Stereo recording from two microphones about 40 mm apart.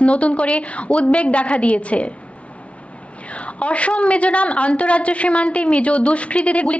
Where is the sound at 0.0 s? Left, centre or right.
Left.